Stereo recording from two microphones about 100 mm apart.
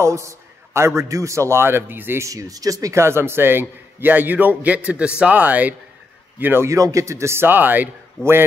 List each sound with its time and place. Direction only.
0.0 s a man's voice: 30° right (ahead or behind)
2.2 s a man's voice: 35° right (ahead or behind); by 7.9 s 20° right (ahead or behind)
8.2 s a man's voice: 10° left (ahead or behind)